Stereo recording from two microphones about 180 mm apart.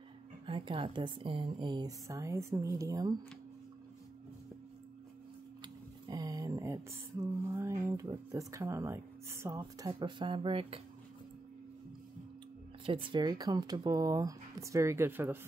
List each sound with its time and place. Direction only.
0.5 s speech: 30° right (ahead or behind)
5.6 s a sound: 20° right (ahead or behind)
7.4 s speech: 15° right (ahead or behind)
12.8 s speech: 30° right (ahead or behind); by 15.3 s 15° right (ahead or behind)